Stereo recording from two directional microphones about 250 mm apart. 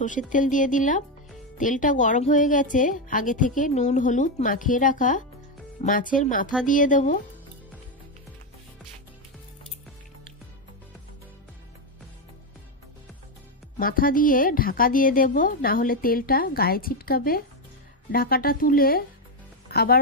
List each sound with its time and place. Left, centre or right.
0.3 s a woman's voice: left
13.7 s a woman's voice: left